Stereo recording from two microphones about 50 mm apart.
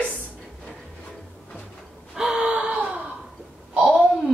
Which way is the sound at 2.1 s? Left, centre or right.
Centre.